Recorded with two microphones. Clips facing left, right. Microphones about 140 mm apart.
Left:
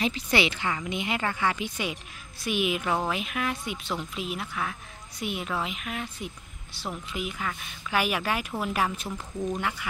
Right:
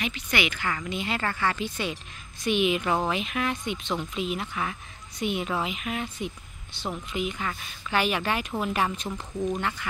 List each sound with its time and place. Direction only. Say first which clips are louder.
0.0 s a woman's voice: left 3 dB; 30° left (ahead or behind); by 9.8 s 10° left (ahead or behind)